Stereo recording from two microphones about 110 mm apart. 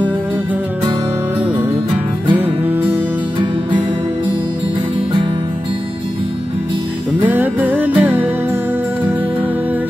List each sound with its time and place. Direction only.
2.3 s music: 15° right (ahead or behind)
7.2 s music: 15° right (ahead or behind)